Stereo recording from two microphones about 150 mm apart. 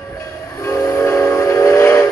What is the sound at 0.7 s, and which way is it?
Train, 20° left (ahead or behind).